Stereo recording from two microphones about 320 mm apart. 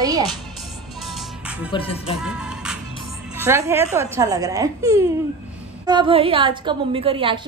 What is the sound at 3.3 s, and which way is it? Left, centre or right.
A woman's voice, centre.